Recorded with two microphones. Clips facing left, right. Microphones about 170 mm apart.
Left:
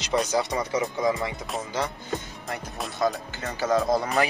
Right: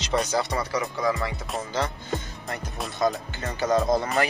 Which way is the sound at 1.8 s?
Centre (ahead or behind).